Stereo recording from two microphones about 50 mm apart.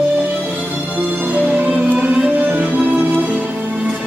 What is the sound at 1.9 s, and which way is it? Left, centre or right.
Music, right.